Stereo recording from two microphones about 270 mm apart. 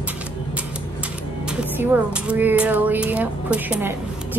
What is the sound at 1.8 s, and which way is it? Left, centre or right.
Speech, centre.